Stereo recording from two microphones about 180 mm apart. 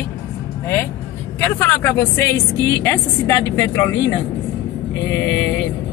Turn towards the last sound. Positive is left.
turn(degrees=80)